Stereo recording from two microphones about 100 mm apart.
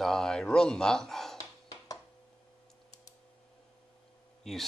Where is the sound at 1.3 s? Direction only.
35° left (ahead or behind).